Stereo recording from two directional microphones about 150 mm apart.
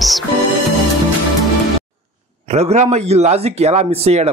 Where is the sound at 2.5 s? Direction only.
45° right (ahead or behind).